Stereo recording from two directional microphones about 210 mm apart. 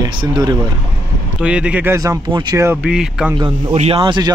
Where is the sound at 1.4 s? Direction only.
5° right (ahead or behind).